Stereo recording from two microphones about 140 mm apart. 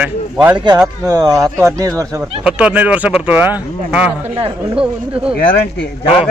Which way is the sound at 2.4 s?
10° right (ahead or behind).